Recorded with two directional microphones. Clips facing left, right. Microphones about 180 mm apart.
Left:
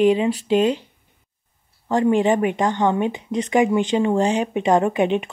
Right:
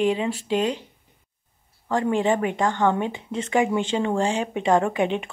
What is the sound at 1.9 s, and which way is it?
Speech, 20° left (ahead or behind).